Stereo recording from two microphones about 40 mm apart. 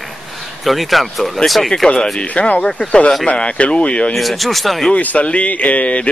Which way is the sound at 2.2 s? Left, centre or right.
Left.